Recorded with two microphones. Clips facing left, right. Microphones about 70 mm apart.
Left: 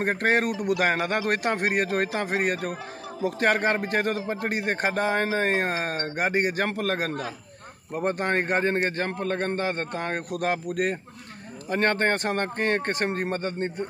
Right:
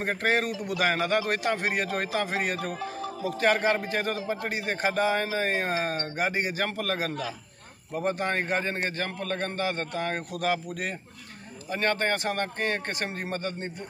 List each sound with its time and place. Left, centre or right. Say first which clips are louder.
0.0 s a man's voice: left 3 dB; left